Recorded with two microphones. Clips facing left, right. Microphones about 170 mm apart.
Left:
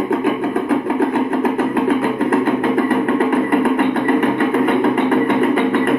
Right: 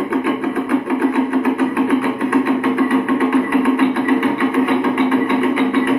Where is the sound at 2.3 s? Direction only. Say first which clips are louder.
Right 1 dB; 50° left (ahead or behind).